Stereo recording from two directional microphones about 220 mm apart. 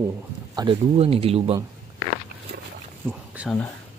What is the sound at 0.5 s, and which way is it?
Speech, 20° right (ahead or behind).